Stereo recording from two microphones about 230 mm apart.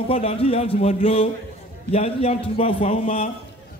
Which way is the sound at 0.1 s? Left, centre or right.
Left.